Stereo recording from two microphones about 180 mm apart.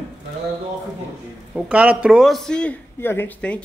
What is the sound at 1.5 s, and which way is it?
Speech, 5° right (ahead or behind).